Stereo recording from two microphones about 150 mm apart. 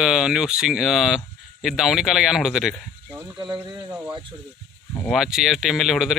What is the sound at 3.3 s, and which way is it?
Speech, 30° right (ahead or behind).